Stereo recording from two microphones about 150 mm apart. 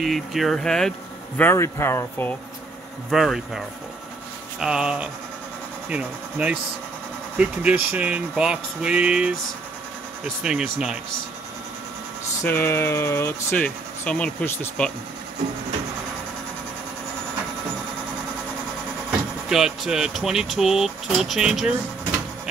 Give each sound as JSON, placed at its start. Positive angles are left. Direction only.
{"t": 0.0, "sound": "speech", "side_deg": 0}
{"t": 1.4, "sound": "speech", "side_deg": 15}
{"t": 3.1, "sound": "speech", "side_deg": 0}
{"t": 12.4, "sound": "speech", "side_deg": 15}
{"t": 19.0, "sound": "speech", "side_deg": -5}